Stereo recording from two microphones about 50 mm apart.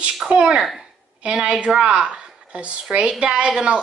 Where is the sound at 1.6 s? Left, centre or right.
Right.